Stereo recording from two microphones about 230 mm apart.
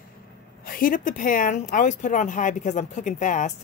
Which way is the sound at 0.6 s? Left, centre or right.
Left.